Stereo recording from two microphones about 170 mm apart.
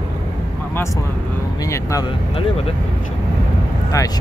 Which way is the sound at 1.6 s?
20° left (ahead or behind).